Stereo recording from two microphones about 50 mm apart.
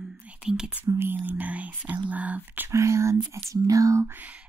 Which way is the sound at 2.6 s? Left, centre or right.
Right.